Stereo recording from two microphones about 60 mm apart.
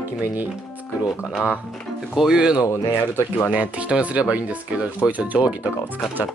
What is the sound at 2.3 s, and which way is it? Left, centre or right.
Speech, centre.